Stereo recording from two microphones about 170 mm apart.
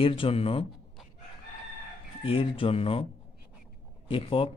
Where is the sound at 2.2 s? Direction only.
30° left (ahead or behind).